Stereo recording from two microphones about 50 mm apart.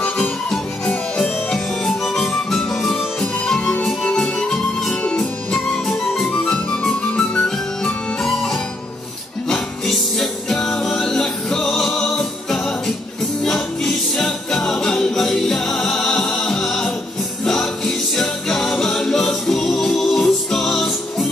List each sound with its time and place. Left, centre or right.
0.0 s music: centre